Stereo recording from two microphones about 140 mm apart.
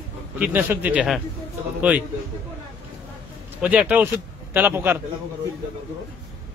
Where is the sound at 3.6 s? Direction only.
10° right (ahead or behind).